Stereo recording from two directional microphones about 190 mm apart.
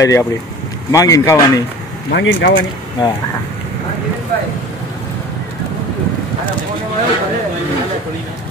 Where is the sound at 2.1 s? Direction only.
70° left (ahead or behind).